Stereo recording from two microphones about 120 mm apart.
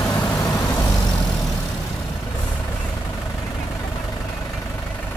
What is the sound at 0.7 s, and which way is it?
Vehicle, 30° left (ahead or behind).